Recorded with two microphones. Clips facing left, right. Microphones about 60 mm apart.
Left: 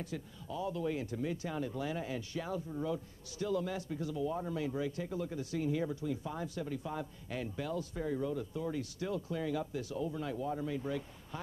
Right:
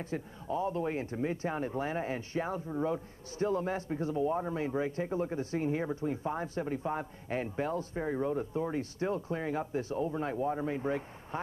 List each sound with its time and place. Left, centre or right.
0.0 s speech: right